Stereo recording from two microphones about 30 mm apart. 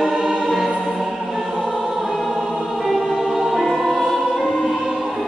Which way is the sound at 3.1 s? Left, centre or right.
Centre.